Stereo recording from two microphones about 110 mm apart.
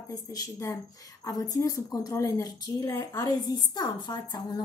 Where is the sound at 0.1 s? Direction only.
30° left (ahead or behind).